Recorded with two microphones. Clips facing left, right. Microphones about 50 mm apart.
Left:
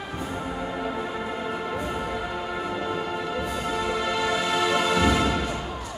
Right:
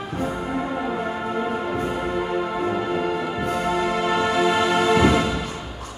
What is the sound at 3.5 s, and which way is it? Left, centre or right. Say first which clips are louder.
Music: right 7 dB; right.